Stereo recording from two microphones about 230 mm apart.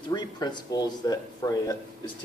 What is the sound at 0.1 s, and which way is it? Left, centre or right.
A man's voice, centre.